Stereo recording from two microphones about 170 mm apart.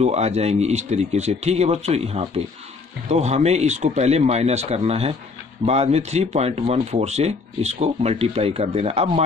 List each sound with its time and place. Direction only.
0.0 s speech: 40° right (ahead or behind)